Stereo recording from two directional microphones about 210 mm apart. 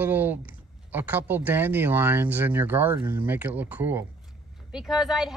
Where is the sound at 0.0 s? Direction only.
10° right (ahead or behind).